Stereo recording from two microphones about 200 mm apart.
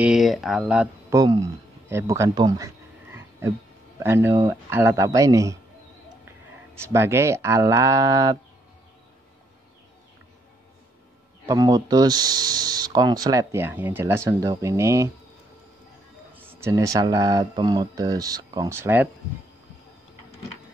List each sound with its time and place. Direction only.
0.0 s speech: centre (ahead or behind)
1.1 s speech: 20° right (ahead or behind)
1.9 s a sound: 15° right (ahead or behind)
4.0 s speech: 10° right (ahead or behind)
6.8 s speech: 15° right (ahead or behind)
11.4 s speech: 15° right (ahead or behind)
16.3 s speech: 10° right (ahead or behind)